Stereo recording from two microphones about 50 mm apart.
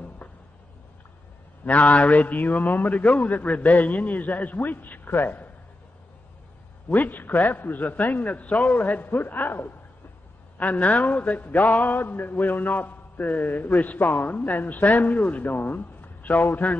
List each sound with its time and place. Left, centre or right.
1.6 s a man's voice: left
6.9 s a man's voice: left
10.6 s a man's voice: left